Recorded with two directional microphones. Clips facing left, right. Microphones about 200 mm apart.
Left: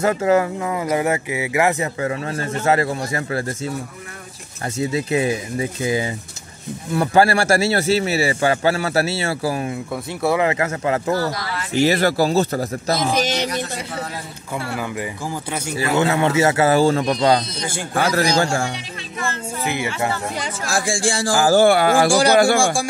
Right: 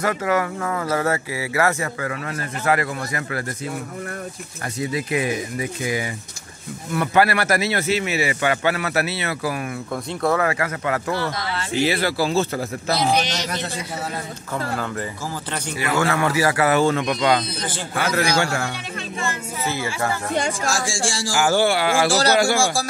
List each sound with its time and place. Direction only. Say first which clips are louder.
0.0 s speech: left 5 dB; 25° left (ahead or behind)
4.7 s speech: left 3 dB; 25° left (ahead or behind)
11.1 s a man's voice: left 4 dB; 40° left (ahead or behind)
11.3 s speech: even; 25° right (ahead or behind)
11.8 s a man's voice: left 5 dB; 45° left (ahead or behind)
14.7 s speech: left 1 dB; 10° left (ahead or behind)
15.8 s a man's voice: left 3 dB; 20° left (ahead or behind)
19.6 s speech: left 2 dB; 20° left (ahead or behind)
20.6 s speech: left 3 dB; 60° left (ahead or behind)
21.4 s a man's voice: left 4 dB; 35° left (ahead or behind)
21.6 s a man's voice: left 5 dB; 50° left (ahead or behind)